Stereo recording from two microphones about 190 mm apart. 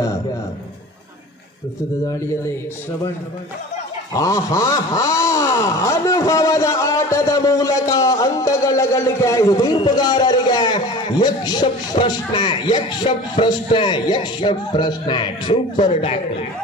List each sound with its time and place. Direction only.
4.1 s speech: 20° left (ahead or behind)